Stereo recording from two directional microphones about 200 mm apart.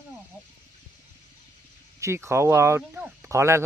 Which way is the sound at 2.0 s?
15° right (ahead or behind).